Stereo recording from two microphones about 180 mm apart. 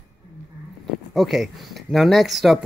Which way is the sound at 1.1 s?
Centre (ahead or behind).